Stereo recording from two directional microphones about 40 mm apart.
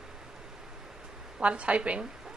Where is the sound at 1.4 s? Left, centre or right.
Right.